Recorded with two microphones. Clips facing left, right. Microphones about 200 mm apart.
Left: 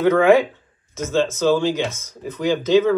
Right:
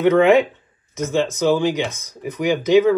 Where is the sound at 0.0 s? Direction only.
20° right (ahead or behind).